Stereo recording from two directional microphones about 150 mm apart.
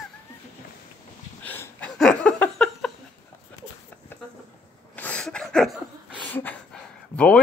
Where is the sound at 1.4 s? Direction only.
10° left (ahead or behind).